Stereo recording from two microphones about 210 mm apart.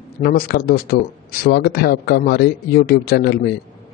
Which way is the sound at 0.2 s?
45° left (ahead or behind).